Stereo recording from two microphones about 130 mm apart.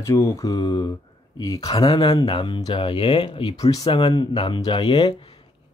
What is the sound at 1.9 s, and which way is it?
Speech, 40° left (ahead or behind).